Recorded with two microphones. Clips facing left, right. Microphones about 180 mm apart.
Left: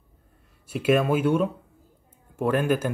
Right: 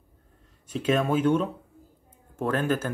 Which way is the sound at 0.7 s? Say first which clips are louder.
Left 3 dB; 10° left (ahead or behind).